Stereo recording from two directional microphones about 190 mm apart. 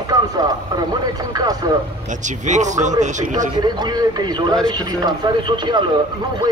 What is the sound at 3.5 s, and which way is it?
Speech, 20° right (ahead or behind).